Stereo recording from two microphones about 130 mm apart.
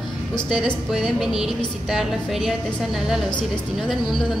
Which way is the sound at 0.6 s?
Centre (ahead or behind).